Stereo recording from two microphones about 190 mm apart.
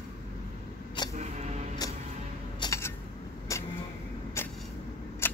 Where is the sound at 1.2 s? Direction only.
35° right (ahead or behind).